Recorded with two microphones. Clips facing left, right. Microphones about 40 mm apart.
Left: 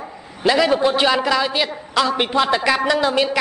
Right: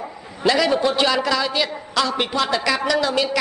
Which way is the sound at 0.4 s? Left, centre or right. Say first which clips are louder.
Left 2 dB; centre.